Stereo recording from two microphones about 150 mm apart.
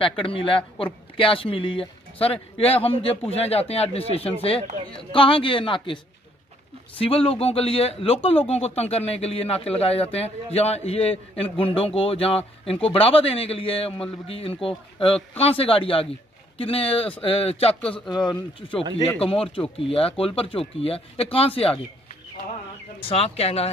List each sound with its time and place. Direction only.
0.0 s speech: 35° left (ahead or behind)
7.0 s speech: 40° left (ahead or behind)
18.1 s speech: 30° left (ahead or behind)
23.0 s speech: 40° left (ahead or behind)